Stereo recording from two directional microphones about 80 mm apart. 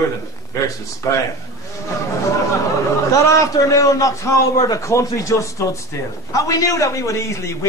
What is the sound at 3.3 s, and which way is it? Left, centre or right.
A man's voice, left.